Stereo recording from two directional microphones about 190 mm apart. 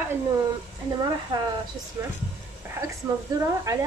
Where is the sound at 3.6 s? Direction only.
15° right (ahead or behind).